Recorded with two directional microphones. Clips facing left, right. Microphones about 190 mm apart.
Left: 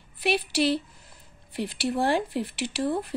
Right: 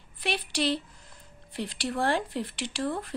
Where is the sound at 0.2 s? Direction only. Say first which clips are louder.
Left 5 dB; 5° left (ahead or behind).